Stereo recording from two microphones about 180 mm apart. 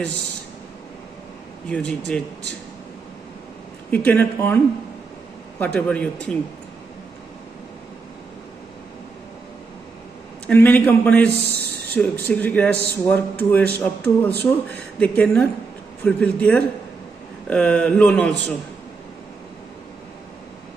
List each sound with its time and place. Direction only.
1.7 s speech: 5° left (ahead or behind)
3.9 s a man's voice: 10° left (ahead or behind)
5.6 s a man's voice: 5° left (ahead or behind)
10.4 s a man's voice: 10° left (ahead or behind)